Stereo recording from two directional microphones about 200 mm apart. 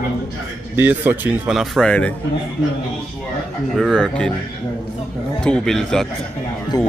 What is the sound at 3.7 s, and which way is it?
Speech, centre (ahead or behind).